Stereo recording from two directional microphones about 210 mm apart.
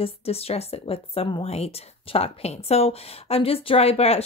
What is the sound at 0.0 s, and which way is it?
Speech, 30° left (ahead or behind).